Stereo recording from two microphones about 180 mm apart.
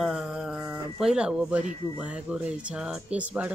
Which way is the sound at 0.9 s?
5° right (ahead or behind).